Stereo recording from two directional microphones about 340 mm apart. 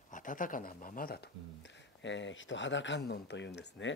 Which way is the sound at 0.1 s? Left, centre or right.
Left.